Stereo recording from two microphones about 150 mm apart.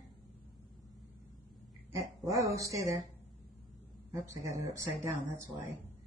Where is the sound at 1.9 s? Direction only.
20° right (ahead or behind).